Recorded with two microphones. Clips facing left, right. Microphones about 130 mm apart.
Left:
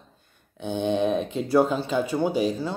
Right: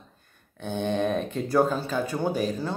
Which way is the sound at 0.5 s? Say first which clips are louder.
Left 3 dB; 15° left (ahead or behind).